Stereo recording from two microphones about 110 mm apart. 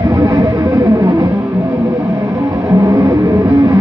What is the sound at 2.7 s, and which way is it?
Vehicle, 30° right (ahead or behind).